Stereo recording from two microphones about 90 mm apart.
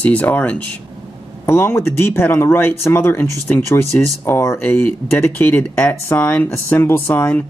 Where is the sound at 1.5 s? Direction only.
30° left (ahead or behind).